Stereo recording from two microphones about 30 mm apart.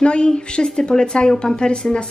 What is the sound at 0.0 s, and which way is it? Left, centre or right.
A woman's voice, left.